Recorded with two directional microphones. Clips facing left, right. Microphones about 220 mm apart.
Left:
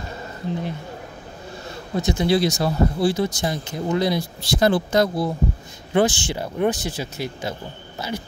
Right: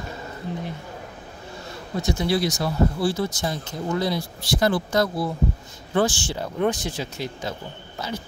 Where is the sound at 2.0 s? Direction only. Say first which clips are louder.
Left 3 dB; 20° left (ahead or behind).